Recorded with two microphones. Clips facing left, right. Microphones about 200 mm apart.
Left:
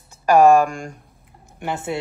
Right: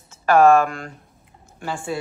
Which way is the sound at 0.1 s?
15° left (ahead or behind).